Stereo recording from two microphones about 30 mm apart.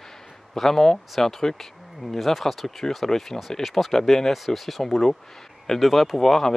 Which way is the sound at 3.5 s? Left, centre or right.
Centre.